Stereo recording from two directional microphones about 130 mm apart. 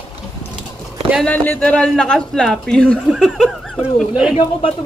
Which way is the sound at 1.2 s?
15° left (ahead or behind).